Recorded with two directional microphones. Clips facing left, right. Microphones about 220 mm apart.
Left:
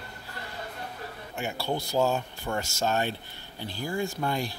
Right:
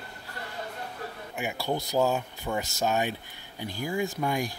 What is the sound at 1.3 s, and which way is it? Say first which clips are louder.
Speech: even; 15° right (ahead or behind).